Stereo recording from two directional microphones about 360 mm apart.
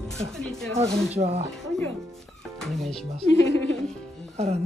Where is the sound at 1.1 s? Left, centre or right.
Centre.